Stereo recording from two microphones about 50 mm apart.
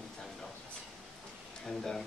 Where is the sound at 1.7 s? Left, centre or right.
Centre.